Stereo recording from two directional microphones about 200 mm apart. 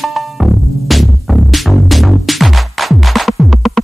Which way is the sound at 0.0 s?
Centre (ahead or behind).